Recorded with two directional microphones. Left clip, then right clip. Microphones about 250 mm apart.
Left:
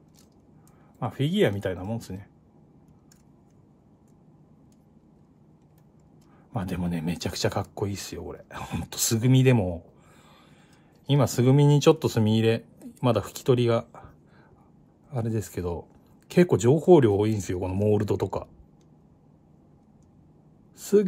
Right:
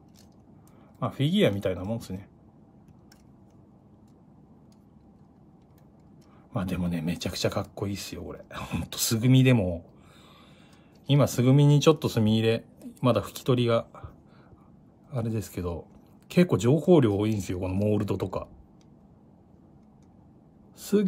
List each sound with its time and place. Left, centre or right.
0.9 s speech: centre
6.5 s speech: centre
11.1 s speech: centre
20.8 s speech: centre